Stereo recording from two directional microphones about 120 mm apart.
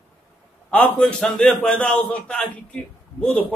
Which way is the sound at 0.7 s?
10° left (ahead or behind).